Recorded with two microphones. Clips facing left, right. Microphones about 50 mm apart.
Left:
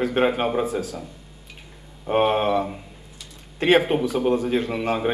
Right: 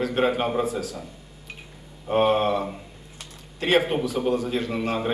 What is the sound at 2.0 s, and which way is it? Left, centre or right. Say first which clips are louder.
Speech: left 1 dB; centre.